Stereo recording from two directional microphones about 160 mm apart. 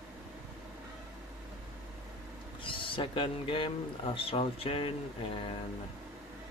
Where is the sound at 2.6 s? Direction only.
30° left (ahead or behind).